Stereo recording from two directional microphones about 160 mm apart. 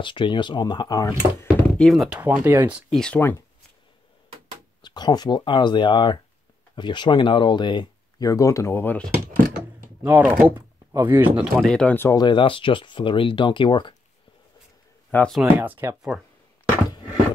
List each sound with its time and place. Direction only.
0.0 s speech: 30° left (ahead or behind)
1.8 s speech: centre (ahead or behind)
2.9 s speech: 5° left (ahead or behind)
4.8 s speech: 25° left (ahead or behind); by 9.1 s 10° left (ahead or behind)
10.0 s speech: 10° right (ahead or behind)
11.6 s speech: 5° left (ahead or behind)
12.2 s speech: 30° left (ahead or behind)
15.0 s speech: 10° left (ahead or behind)
15.4 s speech: 10° right (ahead or behind)